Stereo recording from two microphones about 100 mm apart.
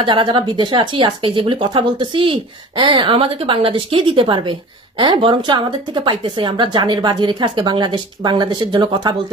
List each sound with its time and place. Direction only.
0.0 s speech: 50° right (ahead or behind)